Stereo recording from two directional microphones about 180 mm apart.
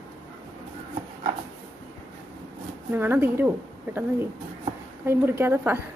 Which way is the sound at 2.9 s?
10° right (ahead or behind).